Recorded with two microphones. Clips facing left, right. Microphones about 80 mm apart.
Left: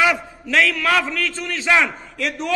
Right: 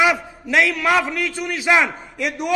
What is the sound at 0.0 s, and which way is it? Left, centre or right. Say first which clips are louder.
A man's voice: right 1 dB; centre.